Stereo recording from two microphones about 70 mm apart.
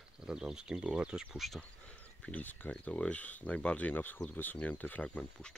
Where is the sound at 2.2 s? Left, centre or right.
Left.